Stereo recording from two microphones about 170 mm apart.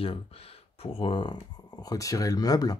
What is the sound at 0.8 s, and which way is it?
Speech, 30° left (ahead or behind).